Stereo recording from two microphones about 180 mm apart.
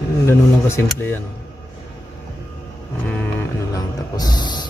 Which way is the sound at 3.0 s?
10° left (ahead or behind).